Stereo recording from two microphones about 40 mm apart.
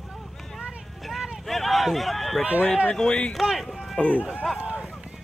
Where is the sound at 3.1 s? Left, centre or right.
Left.